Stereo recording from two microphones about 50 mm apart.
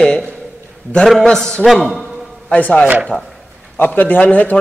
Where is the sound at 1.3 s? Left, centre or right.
Centre.